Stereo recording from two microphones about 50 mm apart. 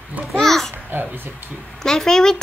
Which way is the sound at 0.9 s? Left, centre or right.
Right.